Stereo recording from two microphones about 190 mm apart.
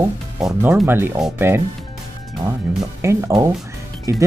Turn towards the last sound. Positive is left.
turn(degrees=-15)  # may be behind; listen again after turning